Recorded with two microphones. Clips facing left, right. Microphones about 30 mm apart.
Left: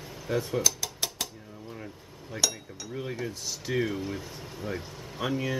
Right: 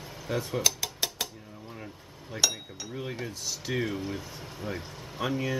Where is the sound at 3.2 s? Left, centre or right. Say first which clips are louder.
Left 1 dB; centre.